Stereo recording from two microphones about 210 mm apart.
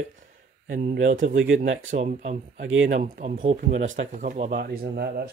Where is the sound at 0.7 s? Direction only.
40° right (ahead or behind).